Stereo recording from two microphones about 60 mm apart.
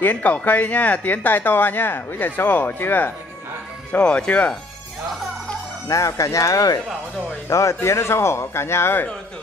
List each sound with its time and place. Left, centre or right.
0.0 s speech: left
3.9 s speech: centre
5.9 s speech: left
7.4 s speech: left